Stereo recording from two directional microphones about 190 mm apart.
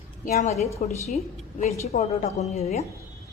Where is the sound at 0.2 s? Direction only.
40° left (ahead or behind).